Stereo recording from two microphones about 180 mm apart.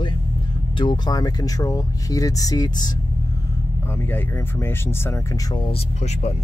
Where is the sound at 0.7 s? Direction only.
25° left (ahead or behind).